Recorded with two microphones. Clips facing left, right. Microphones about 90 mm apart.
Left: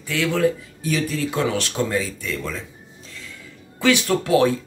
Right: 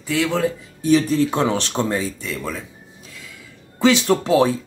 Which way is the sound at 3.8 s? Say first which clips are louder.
Right 3 dB; 25° right (ahead or behind).